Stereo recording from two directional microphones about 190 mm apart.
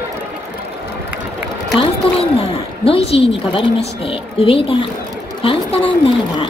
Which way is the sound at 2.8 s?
30° left (ahead or behind).